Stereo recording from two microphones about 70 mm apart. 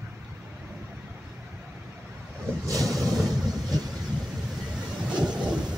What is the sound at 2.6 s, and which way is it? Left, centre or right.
Vehicle, right.